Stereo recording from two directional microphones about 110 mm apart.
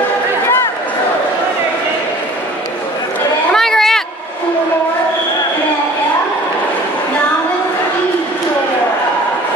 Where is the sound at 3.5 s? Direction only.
5° left (ahead or behind).